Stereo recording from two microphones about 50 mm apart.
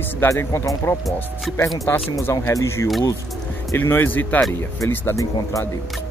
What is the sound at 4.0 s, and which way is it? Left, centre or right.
Speech, left.